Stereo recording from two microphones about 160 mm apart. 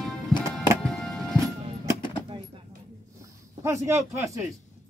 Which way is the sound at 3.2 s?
15° right (ahead or behind).